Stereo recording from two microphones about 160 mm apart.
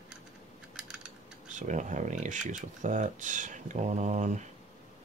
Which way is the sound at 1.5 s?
50° right (ahead or behind).